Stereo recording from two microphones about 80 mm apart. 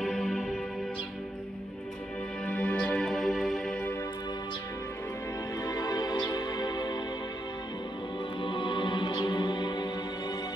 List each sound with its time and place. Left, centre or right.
0.0 s music: centre
2.4 s music: centre
3.1 s music: centre
5.6 s music: left
8.4 s music: left